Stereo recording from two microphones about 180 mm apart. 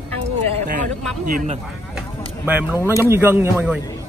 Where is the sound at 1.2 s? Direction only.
50° right (ahead or behind).